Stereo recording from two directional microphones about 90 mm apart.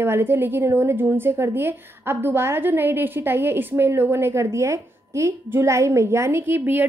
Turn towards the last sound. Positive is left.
turn(degrees=-20)  # may be behind; listen again after turning